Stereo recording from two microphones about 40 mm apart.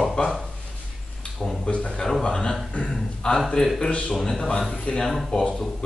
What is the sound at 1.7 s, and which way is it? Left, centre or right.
Speech, left.